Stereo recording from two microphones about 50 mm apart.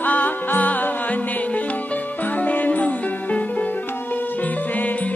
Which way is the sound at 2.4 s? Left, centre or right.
Left.